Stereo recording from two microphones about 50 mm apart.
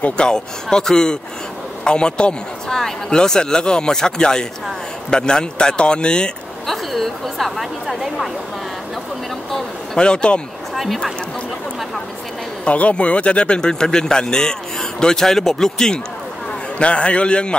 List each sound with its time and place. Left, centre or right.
0.2 s speech: centre
6.7 s a woman's voice: centre
9.9 s a man's voice: centre
10.7 s a sound: centre
12.6 s speech: left
16.7 s a man's voice: left